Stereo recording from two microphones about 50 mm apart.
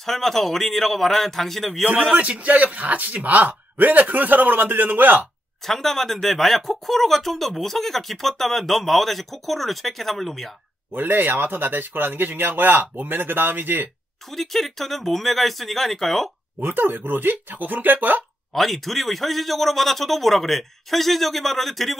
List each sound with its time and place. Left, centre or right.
0.0 s speech: centre
2.1 s a man's voice: right
5.7 s speech: centre
10.9 s a man's voice: right
14.3 s speech: centre
16.5 s a man's voice: right
18.5 s speech: centre